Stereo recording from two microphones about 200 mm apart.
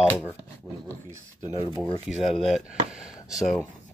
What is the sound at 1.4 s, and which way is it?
Speech, 20° left (ahead or behind).